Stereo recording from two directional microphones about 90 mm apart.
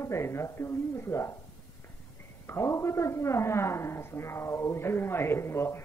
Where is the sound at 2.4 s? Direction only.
30° left (ahead or behind).